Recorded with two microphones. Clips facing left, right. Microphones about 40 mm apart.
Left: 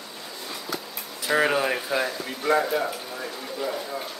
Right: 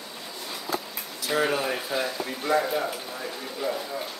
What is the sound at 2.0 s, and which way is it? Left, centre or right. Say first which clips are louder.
Speech: left 2 dB; centre.